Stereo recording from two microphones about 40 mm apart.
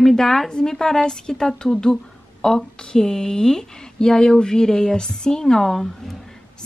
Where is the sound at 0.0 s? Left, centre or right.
Centre.